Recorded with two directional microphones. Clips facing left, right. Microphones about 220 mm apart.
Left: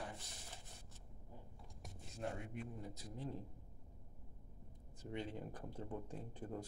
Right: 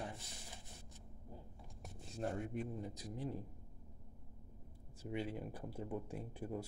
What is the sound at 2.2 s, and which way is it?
Speech, 35° right (ahead or behind).